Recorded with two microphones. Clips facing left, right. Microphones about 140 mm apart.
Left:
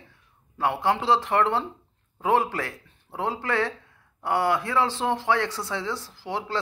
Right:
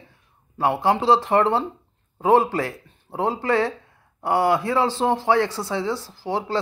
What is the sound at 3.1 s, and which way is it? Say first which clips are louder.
Speech: right 5 dB; 15° right (ahead or behind).